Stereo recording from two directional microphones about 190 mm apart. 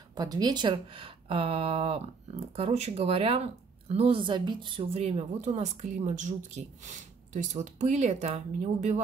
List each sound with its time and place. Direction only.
0.1 s speech: 20° right (ahead or behind)